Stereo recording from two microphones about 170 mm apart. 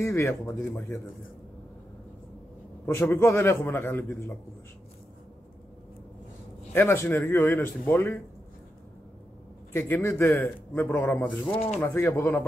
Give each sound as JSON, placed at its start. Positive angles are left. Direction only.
{"t": 0.0, "sound": "a man's voice", "side_deg": 15}
{"t": 2.9, "sound": "a man's voice", "side_deg": 15}
{"t": 6.7, "sound": "a man's voice", "side_deg": 15}
{"t": 9.7, "sound": "a man's voice", "side_deg": 15}
{"t": 11.5, "sound": "speech", "side_deg": 35}
{"t": 11.8, "sound": "a man's voice", "side_deg": 10}